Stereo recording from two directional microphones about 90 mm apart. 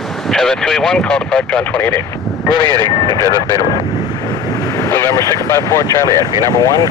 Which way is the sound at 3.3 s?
65° left (ahead or behind).